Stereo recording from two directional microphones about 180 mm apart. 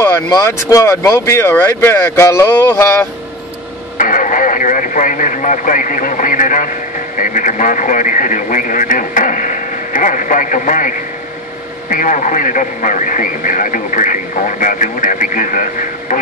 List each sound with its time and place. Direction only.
0.0 s speech: 15° left (ahead or behind)
4.0 s speech: 45° left (ahead or behind)